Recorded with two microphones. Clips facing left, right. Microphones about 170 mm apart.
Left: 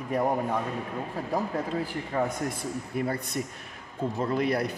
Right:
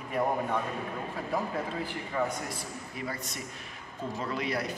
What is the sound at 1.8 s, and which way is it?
A man's voice, 45° left (ahead or behind).